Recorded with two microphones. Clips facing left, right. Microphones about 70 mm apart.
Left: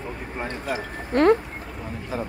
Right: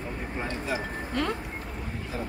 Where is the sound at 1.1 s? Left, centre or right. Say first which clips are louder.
Left 13 dB; left.